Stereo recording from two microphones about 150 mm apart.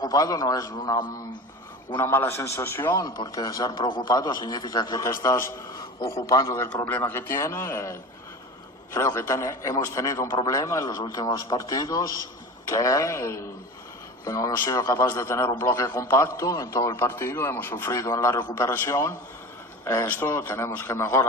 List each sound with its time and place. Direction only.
0.0 s a man's voice: 25° left (ahead or behind)
2.0 s a man's voice: 15° left (ahead or behind)